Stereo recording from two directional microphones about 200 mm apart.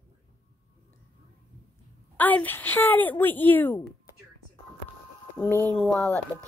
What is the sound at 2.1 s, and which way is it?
Speech, 10° left (ahead or behind).